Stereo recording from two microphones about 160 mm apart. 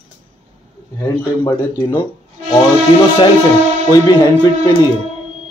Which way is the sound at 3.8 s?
20° left (ahead or behind).